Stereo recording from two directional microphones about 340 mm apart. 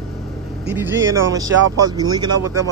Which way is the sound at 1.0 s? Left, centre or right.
Right.